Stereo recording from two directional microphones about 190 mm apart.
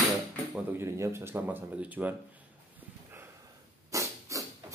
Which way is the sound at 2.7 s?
10° right (ahead or behind).